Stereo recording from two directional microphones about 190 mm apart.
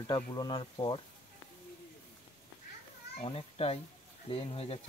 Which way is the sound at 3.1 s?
30° left (ahead or behind).